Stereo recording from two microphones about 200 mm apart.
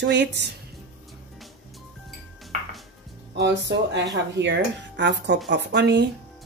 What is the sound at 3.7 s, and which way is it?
Speech, 60° right (ahead or behind).